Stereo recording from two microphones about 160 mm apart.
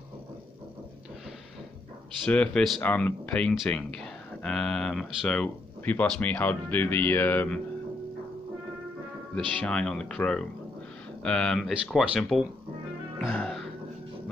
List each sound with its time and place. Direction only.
2.2 s speech: 5° left (ahead or behind)
9.6 s speech: 5° left (ahead or behind)
13.2 s music: centre (ahead or behind)